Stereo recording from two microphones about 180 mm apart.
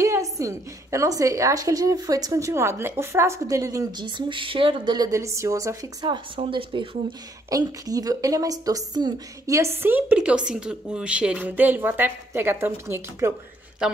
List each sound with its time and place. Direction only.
0.0 s a woman's voice: 15° right (ahead or behind)
13.8 s a man's voice: 5° right (ahead or behind)